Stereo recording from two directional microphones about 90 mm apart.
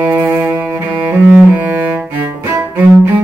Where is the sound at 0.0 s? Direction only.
20° right (ahead or behind).